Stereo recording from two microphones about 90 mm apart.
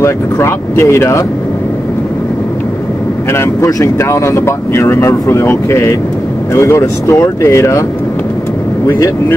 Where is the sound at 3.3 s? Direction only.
35° left (ahead or behind).